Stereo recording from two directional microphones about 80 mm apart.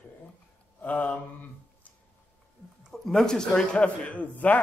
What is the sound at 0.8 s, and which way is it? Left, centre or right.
Mantra, left.